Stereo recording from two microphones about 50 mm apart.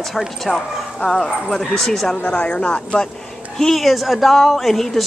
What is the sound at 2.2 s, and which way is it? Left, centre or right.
Speech, left.